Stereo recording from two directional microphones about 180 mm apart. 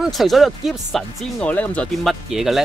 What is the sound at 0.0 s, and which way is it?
Speech, centre (ahead or behind).